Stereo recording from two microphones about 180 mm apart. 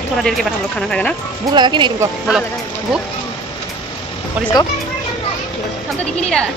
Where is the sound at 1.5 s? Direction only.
25° right (ahead or behind).